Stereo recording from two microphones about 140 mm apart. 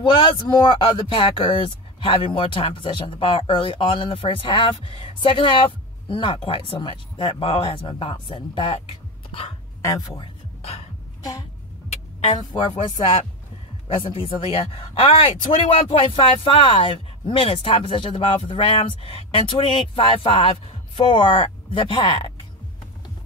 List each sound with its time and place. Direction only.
0.0 s speech: 35° left (ahead or behind)
9.8 s speech: 25° left (ahead or behind)
11.9 s speech: 50° left (ahead or behind); by 22.2 s 35° left (ahead or behind)